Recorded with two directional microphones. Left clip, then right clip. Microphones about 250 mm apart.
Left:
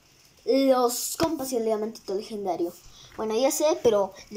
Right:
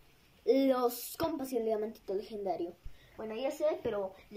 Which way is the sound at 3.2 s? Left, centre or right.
Left.